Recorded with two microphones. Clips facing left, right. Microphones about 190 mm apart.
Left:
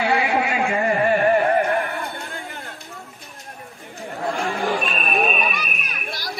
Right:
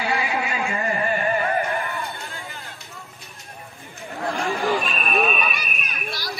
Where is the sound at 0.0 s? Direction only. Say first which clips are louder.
Left 5 dB; 60° left (ahead or behind).